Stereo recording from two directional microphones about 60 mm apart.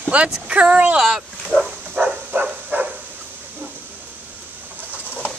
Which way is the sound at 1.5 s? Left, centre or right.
Right.